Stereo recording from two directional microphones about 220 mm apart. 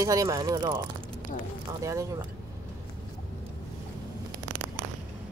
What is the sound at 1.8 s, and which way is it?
Speech, 15° right (ahead or behind).